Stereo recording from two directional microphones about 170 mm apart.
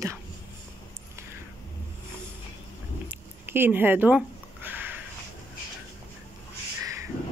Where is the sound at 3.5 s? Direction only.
10° right (ahead or behind).